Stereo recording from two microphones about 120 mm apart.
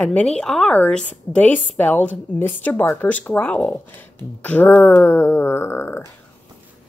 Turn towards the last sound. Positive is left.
turn(degrees=20)  # may be behind; listen again after turning